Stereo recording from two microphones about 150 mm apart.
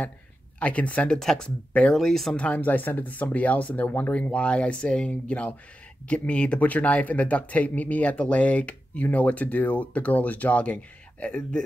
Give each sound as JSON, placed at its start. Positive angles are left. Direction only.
{"t": 0.6, "sound": "speech", "side_deg": 10}